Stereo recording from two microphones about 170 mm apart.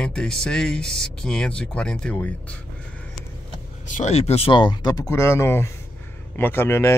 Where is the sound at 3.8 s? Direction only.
45° left (ahead or behind).